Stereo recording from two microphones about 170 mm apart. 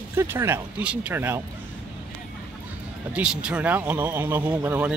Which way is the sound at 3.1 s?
5° right (ahead or behind).